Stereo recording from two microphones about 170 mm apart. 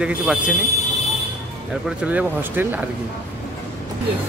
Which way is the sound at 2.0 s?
10° right (ahead or behind).